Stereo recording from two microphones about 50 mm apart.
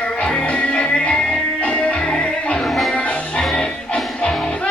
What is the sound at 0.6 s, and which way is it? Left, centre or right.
Music, centre.